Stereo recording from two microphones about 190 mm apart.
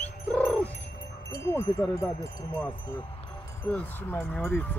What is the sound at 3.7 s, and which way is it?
Speech, 10° left (ahead or behind).